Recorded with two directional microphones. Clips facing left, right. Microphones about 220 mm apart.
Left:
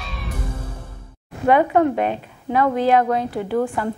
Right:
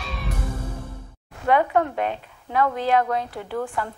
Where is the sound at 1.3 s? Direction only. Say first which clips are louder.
Left 4 dB; 15° left (ahead or behind).